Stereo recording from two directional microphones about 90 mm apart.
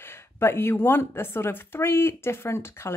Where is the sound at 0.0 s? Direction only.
25° left (ahead or behind).